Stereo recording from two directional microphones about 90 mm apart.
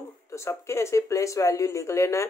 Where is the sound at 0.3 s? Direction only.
35° left (ahead or behind).